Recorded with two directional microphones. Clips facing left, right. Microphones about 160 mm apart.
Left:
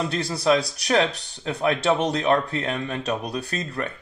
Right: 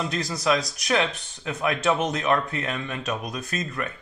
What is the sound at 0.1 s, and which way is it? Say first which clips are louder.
Speech: left 4 dB; 30° left (ahead or behind).